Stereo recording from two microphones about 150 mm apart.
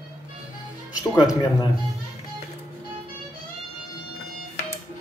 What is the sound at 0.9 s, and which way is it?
Speech, 25° left (ahead or behind).